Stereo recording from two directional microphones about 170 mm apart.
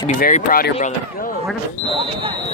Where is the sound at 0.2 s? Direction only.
55° left (ahead or behind).